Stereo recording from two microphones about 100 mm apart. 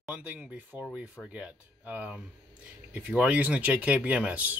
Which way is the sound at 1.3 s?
15° right (ahead or behind).